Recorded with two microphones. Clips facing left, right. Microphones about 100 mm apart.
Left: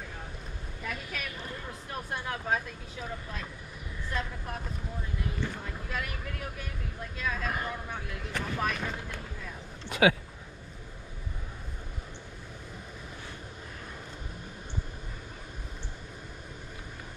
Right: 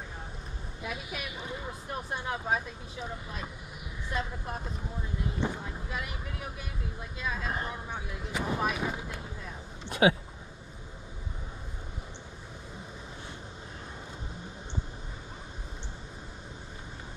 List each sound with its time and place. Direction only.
0.8 s speech: 15° right (ahead or behind)
9.8 s speech: 25° right (ahead or behind)